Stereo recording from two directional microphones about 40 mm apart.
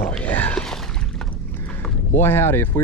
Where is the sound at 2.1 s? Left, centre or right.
Left.